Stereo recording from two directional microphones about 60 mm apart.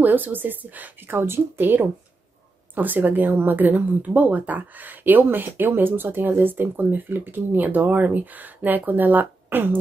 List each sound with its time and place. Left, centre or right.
0.0 s speech: right